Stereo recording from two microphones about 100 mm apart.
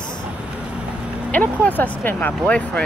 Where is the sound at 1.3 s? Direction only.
15° left (ahead or behind).